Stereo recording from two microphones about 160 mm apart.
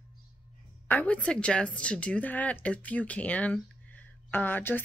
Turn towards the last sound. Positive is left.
turn(degrees=10)  # may be behind; listen again after turning